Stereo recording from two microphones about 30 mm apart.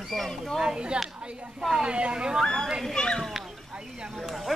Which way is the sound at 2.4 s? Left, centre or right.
Centre.